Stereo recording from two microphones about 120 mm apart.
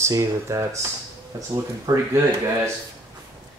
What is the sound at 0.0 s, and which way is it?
Speech, 25° right (ahead or behind).